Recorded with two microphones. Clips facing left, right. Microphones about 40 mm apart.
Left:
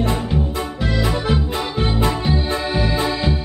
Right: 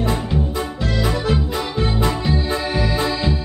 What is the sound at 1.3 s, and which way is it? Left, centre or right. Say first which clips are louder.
Music: even; centre.